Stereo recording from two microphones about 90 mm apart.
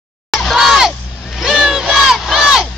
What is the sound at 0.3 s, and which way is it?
Crowd, centre (ahead or behind).